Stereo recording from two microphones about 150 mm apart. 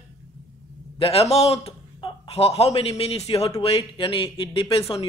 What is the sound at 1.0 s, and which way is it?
A man's voice, 40° left (ahead or behind).